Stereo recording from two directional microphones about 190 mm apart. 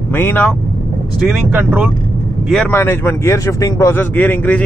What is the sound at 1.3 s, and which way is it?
Speech, 5° right (ahead or behind).